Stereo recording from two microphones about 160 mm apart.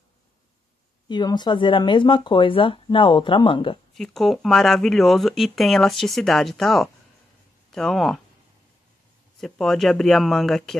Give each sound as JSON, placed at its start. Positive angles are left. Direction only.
{"t": 1.0, "sound": "speech", "side_deg": 30}
{"t": 3.9, "sound": "speech", "side_deg": 0}
{"t": 9.4, "sound": "speech", "side_deg": 0}